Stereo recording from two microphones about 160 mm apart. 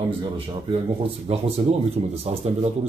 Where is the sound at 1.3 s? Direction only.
40° right (ahead or behind).